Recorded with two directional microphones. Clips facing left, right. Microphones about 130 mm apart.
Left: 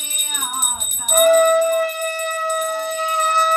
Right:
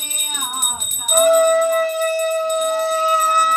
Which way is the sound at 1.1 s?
10° right (ahead or behind).